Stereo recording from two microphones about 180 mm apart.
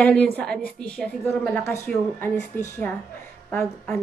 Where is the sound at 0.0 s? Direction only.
5° left (ahead or behind).